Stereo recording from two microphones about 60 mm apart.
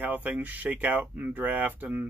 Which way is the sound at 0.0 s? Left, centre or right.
Right.